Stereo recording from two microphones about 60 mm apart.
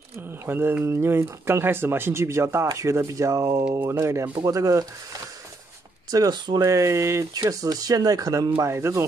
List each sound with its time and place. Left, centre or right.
0.5 s mantra: right
0.8 s speech: right
2.7 s speech: right
4.0 s speech: right
4.5 s speech: right
6.1 s speech: right
7.3 s speech: right
8.7 s speech: right